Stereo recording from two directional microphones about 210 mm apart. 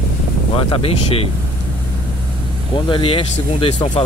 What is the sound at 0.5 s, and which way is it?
Speech, 25° left (ahead or behind).